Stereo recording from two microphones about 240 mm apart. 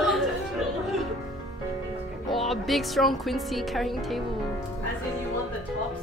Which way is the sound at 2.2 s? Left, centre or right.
Centre.